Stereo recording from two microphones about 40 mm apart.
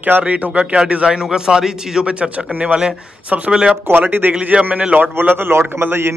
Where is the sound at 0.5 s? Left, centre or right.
Right.